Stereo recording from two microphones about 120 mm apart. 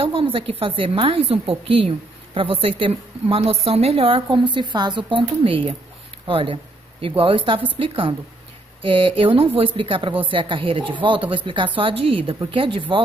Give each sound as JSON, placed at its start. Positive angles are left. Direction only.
{"t": 0.0, "sound": "a woman's voice", "side_deg": -45}